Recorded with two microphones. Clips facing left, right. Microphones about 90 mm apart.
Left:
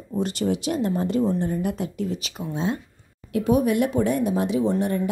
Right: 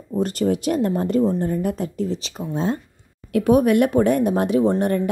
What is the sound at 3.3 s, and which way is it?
Speech, 60° right (ahead or behind).